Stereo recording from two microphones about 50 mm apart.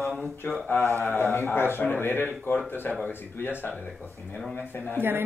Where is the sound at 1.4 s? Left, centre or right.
Left.